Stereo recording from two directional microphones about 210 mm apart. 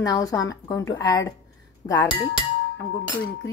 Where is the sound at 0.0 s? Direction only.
15° left (ahead or behind).